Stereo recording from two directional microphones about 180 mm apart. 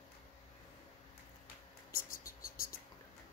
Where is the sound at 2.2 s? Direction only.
50° left (ahead or behind).